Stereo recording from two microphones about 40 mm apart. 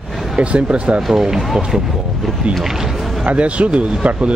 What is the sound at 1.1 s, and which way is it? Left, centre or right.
Speech, centre.